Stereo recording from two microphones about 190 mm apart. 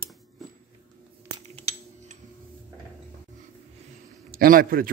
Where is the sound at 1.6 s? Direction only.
35° right (ahead or behind).